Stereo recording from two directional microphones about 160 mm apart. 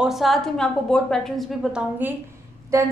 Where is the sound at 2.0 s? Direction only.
10° right (ahead or behind).